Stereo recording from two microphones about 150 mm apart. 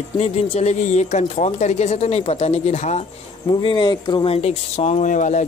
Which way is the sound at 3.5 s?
30° left (ahead or behind).